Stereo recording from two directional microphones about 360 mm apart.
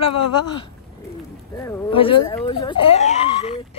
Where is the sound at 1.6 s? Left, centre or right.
Centre.